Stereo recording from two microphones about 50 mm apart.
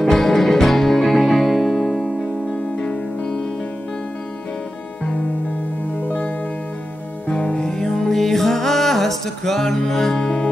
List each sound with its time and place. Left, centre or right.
0.0 s music: centre
2.8 s music: centre
6.0 s music: left; by 10.5 s centre